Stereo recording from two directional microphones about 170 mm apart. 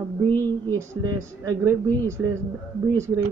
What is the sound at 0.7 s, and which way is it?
Speech, 20° right (ahead or behind).